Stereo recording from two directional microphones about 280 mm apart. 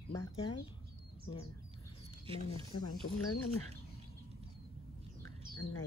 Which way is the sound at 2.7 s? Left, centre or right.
Left.